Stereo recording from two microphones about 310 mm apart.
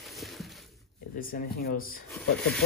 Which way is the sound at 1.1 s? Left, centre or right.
Left.